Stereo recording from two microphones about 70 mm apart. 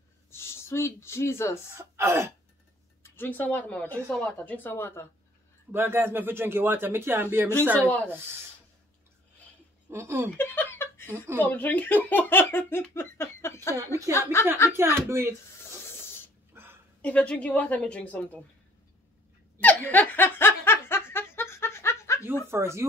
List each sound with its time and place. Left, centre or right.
0.3 s speech: left
1.8 s speech: right
3.0 s speech: left
4.7 s speech: left
5.7 s speech: right
7.8 s speech: centre
9.8 s speech: right
10.3 s speech: left
14.1 s speech: right
14.7 s speech: right
16.5 s a sound: right
17.0 s speech: centre
19.6 s laughter: left
22.5 s speech: right